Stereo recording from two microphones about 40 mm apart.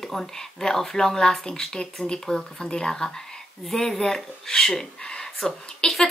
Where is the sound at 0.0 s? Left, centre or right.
Centre.